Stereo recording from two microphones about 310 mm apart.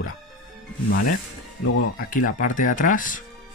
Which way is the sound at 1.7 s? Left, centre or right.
Left.